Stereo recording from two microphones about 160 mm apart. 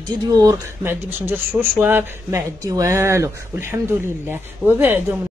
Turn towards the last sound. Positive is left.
turn(degrees=-10)  # may be behind; listen again after turning